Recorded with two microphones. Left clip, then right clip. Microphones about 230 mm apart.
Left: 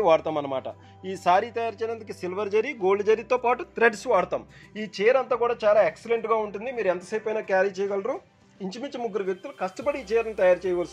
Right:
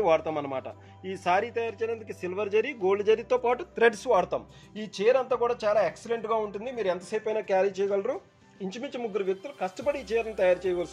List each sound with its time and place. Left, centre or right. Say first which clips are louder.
0.0 s speech: left 3 dB; centre